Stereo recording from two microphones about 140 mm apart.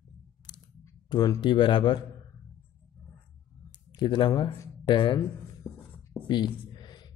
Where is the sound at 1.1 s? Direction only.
30° left (ahead or behind).